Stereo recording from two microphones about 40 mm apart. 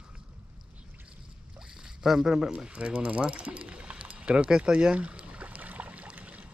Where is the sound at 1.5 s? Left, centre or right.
Centre.